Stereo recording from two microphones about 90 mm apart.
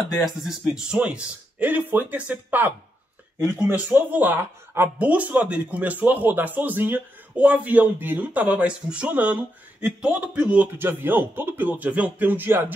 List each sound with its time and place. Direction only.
0.1 s speech: centre (ahead or behind); by 12.7 s 25° right (ahead or behind)